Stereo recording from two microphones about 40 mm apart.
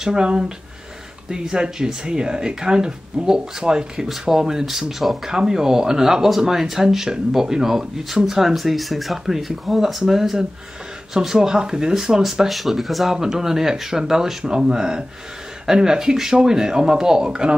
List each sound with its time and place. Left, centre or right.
0.0 s speech: centre